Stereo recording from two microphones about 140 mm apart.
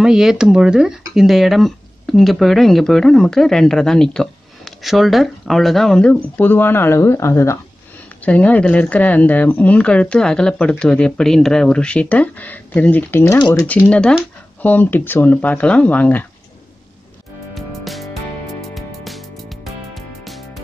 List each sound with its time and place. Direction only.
0.0 s speech: 5° right (ahead or behind); by 7.5 s 20° left (ahead or behind)
8.3 s speech: 10° left (ahead or behind)
13.4 s speech: 35° left (ahead or behind)
13.7 s speech: 10° left (ahead or behind)
17.6 s music: centre (ahead or behind)